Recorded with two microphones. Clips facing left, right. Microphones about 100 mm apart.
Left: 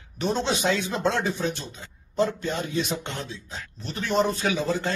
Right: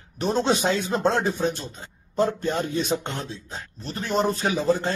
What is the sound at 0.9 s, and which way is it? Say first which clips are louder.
A man's voice: right 3 dB; 45° right (ahead or behind).